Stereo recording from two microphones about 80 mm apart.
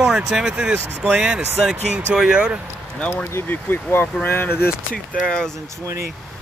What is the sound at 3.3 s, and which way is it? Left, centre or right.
Speech, left.